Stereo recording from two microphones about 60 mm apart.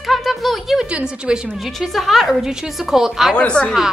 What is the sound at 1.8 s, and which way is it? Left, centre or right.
Music, centre.